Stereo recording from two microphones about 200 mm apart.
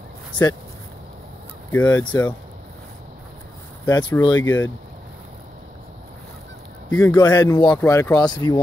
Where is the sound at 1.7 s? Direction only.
15° left (ahead or behind).